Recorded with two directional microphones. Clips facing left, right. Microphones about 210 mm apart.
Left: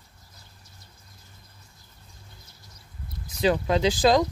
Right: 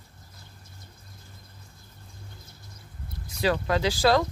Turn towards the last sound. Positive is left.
turn(degrees=20)  # may be behind; listen again after turning